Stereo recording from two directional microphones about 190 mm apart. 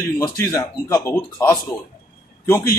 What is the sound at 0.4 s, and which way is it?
A man's voice, 15° left (ahead or behind).